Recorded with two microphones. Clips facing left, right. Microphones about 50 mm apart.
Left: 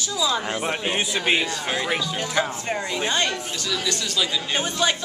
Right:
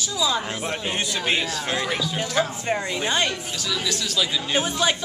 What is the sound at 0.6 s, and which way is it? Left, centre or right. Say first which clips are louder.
A woman's voice: left 2 dB; centre.